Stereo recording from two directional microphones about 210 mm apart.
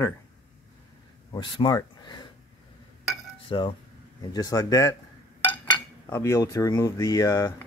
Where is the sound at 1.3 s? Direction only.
20° left (ahead or behind).